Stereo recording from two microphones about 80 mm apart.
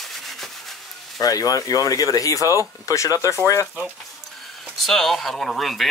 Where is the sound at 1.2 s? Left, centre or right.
Left.